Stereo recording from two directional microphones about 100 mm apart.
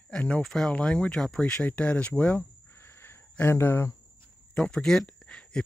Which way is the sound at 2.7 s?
25° left (ahead or behind).